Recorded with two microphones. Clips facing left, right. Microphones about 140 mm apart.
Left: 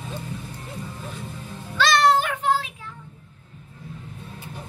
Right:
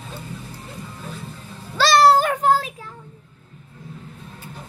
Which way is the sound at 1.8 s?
35° right (ahead or behind).